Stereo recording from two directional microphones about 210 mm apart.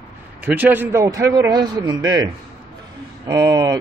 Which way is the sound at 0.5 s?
10° right (ahead or behind).